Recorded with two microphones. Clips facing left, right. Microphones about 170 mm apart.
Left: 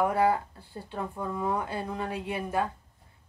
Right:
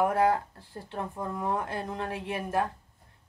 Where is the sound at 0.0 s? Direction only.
Centre (ahead or behind).